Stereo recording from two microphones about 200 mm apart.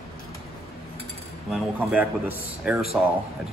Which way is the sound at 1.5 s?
5° right (ahead or behind).